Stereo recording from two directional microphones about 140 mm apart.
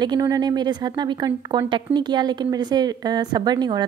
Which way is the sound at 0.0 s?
30° right (ahead or behind).